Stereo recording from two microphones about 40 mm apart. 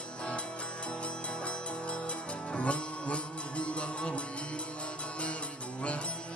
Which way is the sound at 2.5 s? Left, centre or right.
Left.